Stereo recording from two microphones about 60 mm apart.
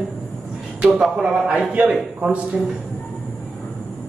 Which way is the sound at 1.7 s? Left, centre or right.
Right.